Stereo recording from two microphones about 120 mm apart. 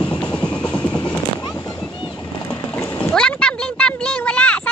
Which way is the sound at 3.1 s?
5° left (ahead or behind).